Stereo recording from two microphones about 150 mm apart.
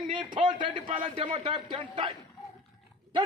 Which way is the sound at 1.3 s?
35° right (ahead or behind).